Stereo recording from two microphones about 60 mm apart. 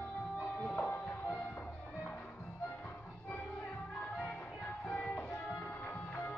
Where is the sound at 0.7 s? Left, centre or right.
Left.